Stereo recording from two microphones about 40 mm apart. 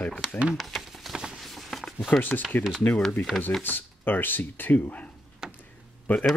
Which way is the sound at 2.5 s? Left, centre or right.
Left.